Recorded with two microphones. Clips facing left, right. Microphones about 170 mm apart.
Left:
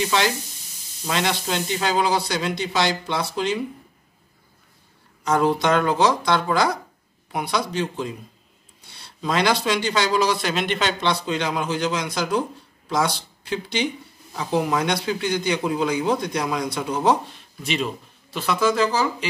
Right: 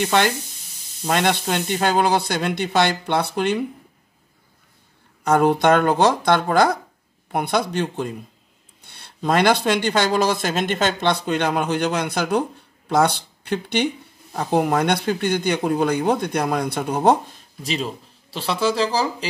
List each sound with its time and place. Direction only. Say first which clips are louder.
0.0 s speech: right 3 dB; 55° right (ahead or behind)
5.2 s speech: right 3 dB; 60° right (ahead or behind)
17.6 s speech: even; 35° right (ahead or behind)